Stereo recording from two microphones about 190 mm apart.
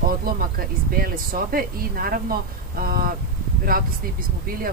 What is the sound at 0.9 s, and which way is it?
Speech, 50° right (ahead or behind).